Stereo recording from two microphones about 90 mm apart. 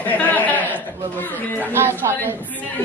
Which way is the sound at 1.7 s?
25° right (ahead or behind).